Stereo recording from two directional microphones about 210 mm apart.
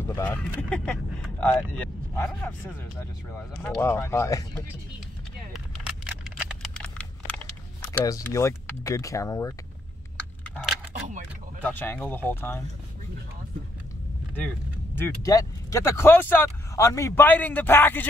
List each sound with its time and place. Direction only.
0.0 s speech: 10° left (ahead or behind)
5.5 s a sound: centre (ahead or behind)
11.0 s speech: 40° right (ahead or behind)
11.6 s speech: 10° left (ahead or behind)
15.0 s speech: 15° left (ahead or behind)